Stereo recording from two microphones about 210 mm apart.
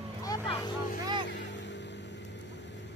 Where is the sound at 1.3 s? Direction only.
60° left (ahead or behind).